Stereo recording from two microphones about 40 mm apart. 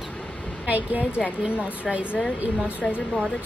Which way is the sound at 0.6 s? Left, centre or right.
Right.